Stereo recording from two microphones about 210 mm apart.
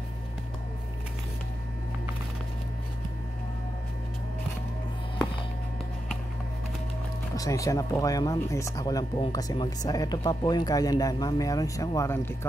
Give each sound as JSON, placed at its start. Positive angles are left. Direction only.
{"t": 7.3, "sound": "speech", "side_deg": 15}